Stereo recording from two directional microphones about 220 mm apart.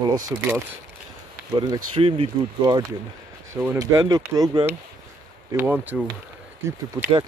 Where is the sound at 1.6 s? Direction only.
25° right (ahead or behind).